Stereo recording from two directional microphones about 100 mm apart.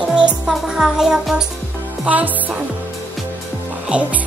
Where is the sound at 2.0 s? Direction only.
15° right (ahead or behind).